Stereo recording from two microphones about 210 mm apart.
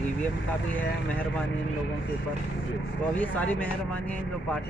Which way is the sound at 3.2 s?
5° left (ahead or behind).